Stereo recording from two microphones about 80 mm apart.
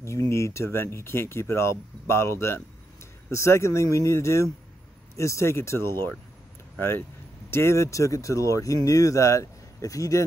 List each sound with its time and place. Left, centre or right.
0.3 s speech: left